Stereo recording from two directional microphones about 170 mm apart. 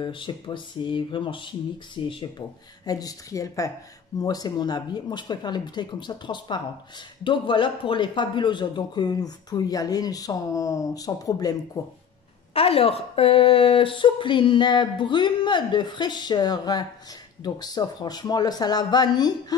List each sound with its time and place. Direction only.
0.0 s a man's voice: 30° left (ahead or behind)
12.5 s a man's voice: 35° left (ahead or behind)